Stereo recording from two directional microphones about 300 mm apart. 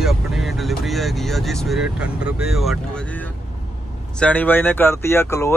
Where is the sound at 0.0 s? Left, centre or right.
Centre.